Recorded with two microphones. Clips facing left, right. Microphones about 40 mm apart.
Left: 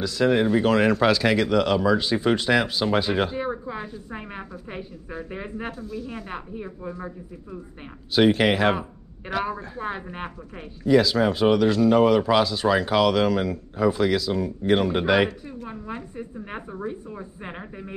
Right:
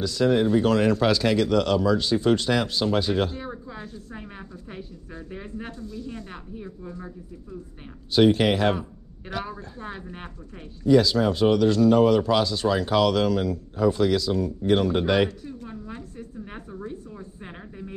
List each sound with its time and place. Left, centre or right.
0.0 s speech: centre
5.7 s speech: centre
6.3 s speech: left
8.1 s speech: centre
9.3 s speech: centre
10.8 s speech: centre
15.7 s speech: left